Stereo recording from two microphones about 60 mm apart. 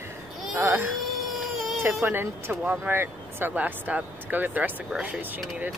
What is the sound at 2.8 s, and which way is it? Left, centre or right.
Speech, right.